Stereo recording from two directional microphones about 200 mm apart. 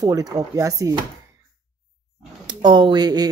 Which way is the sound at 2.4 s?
20° right (ahead or behind).